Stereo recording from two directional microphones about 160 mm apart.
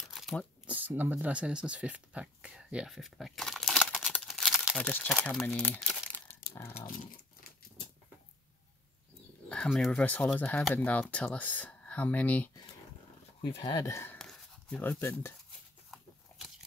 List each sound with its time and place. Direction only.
0.1 s a sound: centre (ahead or behind)
0.7 s speech: 10° right (ahead or behind)
4.3 s crumpling: centre (ahead or behind)
9.5 s speech: 5° left (ahead or behind)
13.4 s speech: 25° left (ahead or behind)
14.1 s a sound: 5° left (ahead or behind)
14.9 s speech: 15° left (ahead or behind)
15.9 s biting: centre (ahead or behind)